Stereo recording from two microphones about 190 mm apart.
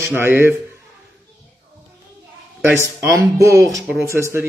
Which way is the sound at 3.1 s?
15° right (ahead or behind).